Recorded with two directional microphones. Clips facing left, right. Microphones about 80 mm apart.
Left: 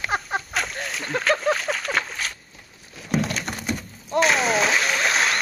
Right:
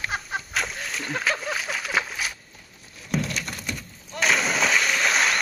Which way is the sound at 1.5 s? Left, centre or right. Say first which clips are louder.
Left 2 dB; centre.